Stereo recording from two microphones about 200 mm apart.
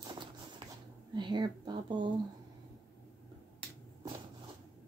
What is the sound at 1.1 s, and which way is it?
Speech, 20° right (ahead or behind).